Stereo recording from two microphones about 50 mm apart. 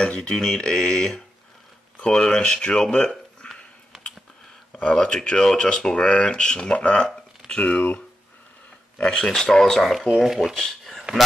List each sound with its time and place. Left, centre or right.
0.0 s speech: centre
4.9 s speech: centre
7.1 s a sound: centre
8.9 s speech: left
9.3 s speech: centre